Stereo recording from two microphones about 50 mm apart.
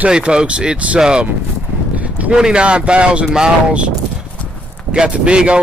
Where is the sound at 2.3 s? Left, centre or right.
Centre.